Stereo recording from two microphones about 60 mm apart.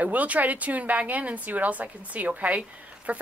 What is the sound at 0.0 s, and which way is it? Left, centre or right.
Speech, right.